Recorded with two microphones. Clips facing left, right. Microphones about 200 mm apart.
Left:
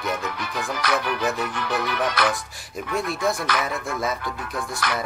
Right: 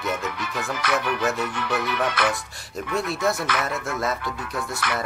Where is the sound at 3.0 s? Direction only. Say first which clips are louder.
Even; centre (ahead or behind).